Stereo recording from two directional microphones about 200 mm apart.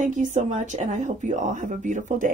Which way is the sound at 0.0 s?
35° right (ahead or behind).